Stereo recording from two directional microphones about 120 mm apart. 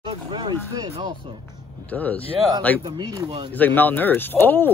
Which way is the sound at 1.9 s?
10° left (ahead or behind).